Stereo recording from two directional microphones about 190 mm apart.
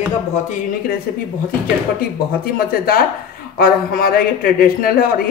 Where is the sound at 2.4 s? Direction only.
50° left (ahead or behind).